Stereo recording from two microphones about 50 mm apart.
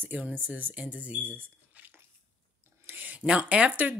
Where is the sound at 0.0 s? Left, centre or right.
Right.